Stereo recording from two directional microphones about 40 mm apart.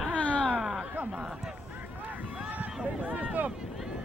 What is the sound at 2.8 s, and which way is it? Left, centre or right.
Run, right.